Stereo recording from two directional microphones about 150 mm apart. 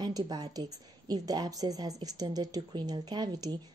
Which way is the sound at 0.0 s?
30° right (ahead or behind).